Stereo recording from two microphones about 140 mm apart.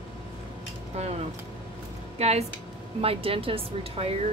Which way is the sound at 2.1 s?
50° right (ahead or behind).